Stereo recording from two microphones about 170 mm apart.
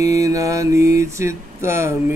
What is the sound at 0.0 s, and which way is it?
Mantra, 20° right (ahead or behind).